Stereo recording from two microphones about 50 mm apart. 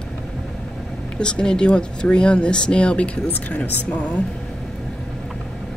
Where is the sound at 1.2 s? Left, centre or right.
Centre.